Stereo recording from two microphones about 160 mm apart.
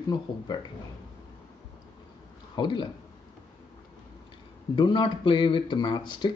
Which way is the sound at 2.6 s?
30° left (ahead or behind).